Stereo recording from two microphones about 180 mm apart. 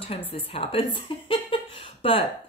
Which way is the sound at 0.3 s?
30° left (ahead or behind).